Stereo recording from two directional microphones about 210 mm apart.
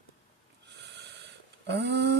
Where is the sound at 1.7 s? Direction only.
55° right (ahead or behind).